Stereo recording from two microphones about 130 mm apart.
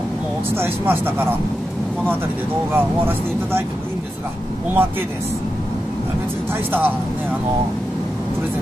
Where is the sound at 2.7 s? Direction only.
15° right (ahead or behind).